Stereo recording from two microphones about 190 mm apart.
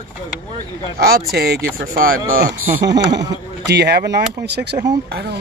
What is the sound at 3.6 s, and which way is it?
Speech, 60° right (ahead or behind).